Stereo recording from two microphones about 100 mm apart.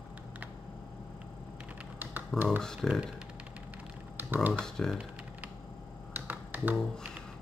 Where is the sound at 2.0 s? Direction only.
20° right (ahead or behind).